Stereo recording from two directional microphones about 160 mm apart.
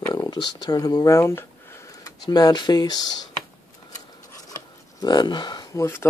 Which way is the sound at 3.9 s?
20° left (ahead or behind).